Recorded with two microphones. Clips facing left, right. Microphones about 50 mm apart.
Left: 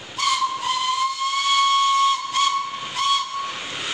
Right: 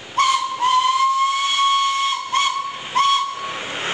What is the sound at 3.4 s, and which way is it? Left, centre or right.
Train, right.